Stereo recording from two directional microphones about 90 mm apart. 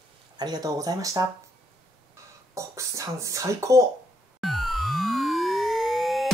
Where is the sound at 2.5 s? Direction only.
35° right (ahead or behind).